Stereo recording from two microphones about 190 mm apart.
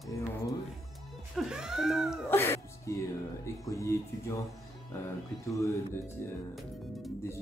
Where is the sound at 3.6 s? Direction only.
15° left (ahead or behind).